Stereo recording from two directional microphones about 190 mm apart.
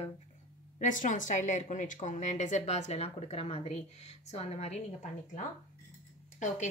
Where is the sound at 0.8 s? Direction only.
40° left (ahead or behind).